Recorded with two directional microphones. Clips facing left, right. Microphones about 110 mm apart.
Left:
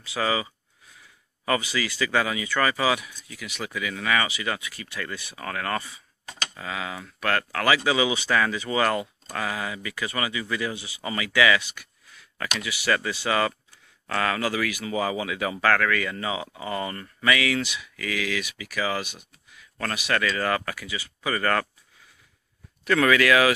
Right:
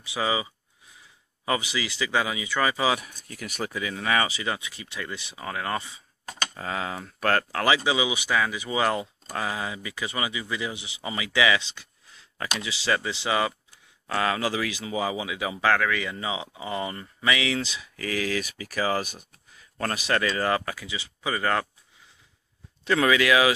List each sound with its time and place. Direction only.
0.0 s speech: 15° right (ahead or behind)
3.0 s speech: 45° right (ahead or behind)
3.7 s speech: 30° right (ahead or behind)
6.5 s speech: 35° right (ahead or behind)
7.6 s speech: 20° right (ahead or behind)
22.8 s speech: 20° right (ahead or behind)